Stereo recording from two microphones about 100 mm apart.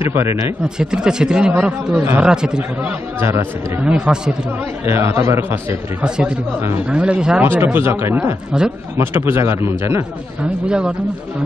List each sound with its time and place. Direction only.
0.0 s a man's voice: 25° right (ahead or behind)
0.7 s speech: 10° right (ahead or behind)
3.2 s a man's voice: 25° right (ahead or behind)
3.8 s speech: 10° right (ahead or behind)
4.8 s a man's voice: 25° right (ahead or behind)
6.0 s speech: 10° right (ahead or behind)
7.4 s a man's voice: 20° right (ahead or behind)
10.7 s speech: 10° right (ahead or behind)